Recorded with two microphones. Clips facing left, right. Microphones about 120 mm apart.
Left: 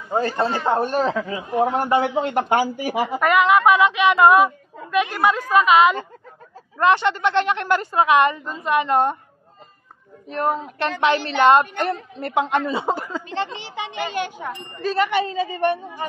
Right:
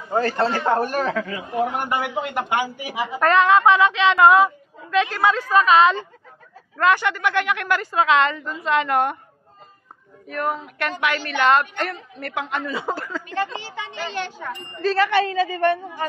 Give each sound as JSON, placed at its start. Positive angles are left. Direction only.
{"t": 0.1, "sound": "a woman's voice", "side_deg": 20}
{"t": 2.0, "sound": "speech", "side_deg": 40}
{"t": 3.1, "sound": "speech", "side_deg": 10}
{"t": 6.8, "sound": "a woman's voice", "side_deg": 25}
{"t": 10.2, "sound": "a woman's voice", "side_deg": 25}